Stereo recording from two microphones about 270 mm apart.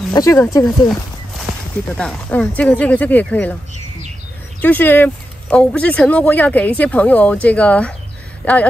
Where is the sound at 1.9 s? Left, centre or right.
Centre.